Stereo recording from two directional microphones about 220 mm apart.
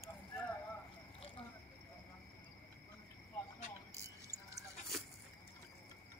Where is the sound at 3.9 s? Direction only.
15° right (ahead or behind).